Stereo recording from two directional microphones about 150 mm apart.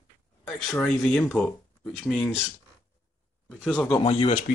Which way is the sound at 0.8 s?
5° left (ahead or behind).